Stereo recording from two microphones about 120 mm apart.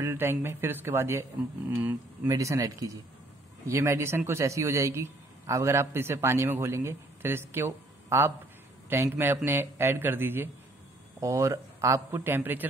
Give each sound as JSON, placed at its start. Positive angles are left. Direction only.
{"t": 0.0, "sound": "a man's voice", "side_deg": -20}
{"t": 2.2, "sound": "a man's voice", "side_deg": -30}